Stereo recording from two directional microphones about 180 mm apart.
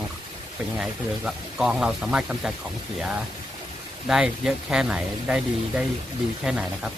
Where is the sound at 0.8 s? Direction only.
5° right (ahead or behind).